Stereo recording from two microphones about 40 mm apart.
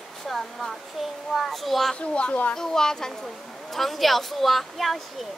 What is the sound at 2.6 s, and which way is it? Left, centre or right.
A child's voice, centre.